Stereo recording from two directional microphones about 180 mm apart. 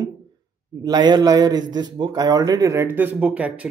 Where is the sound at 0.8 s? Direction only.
25° right (ahead or behind).